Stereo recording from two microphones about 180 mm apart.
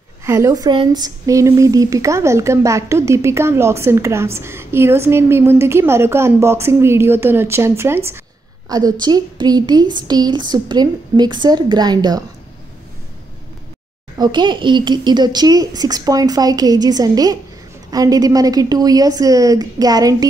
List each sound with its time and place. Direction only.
0.2 s a woman's voice: 15° right (ahead or behind)
14.1 s a woman's voice: 25° right (ahead or behind)